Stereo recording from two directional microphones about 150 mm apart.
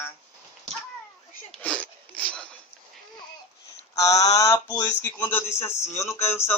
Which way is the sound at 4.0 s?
20° left (ahead or behind).